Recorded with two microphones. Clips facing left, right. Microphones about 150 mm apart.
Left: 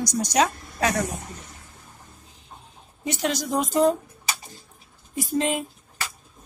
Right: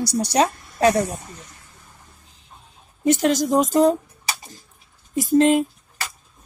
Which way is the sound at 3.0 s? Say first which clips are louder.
Right 8 dB; 45° right (ahead or behind).